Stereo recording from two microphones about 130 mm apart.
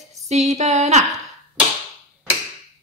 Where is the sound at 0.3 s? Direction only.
60° right (ahead or behind).